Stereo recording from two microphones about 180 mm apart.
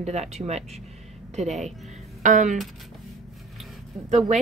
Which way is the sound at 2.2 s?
45° right (ahead or behind).